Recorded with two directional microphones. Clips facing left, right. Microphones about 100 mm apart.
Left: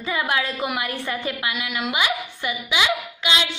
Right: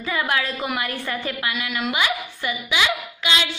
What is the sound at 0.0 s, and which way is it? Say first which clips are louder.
A woman's voice: even; 20° left (ahead or behind).